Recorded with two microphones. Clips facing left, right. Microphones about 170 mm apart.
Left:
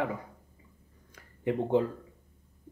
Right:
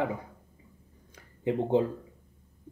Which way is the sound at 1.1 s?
25° right (ahead or behind).